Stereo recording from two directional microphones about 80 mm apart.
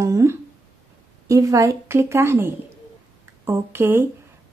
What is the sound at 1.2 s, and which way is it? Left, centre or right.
A woman's voice, right.